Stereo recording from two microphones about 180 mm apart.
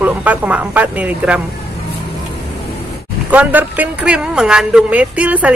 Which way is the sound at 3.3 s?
10° right (ahead or behind).